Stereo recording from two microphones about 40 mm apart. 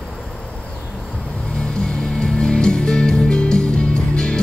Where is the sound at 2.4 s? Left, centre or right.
Left.